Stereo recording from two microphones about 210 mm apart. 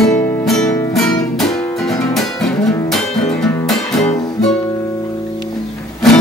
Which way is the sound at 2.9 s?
Centre (ahead or behind).